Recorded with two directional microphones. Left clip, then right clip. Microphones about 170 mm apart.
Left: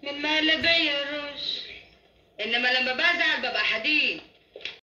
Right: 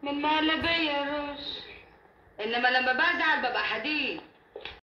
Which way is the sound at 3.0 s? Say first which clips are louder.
Left 2 dB; 25° right (ahead or behind).